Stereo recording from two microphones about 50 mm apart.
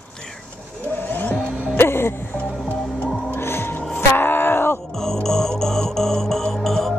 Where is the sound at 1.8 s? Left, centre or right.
Left.